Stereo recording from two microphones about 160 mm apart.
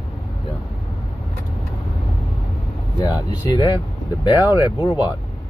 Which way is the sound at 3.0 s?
25° left (ahead or behind).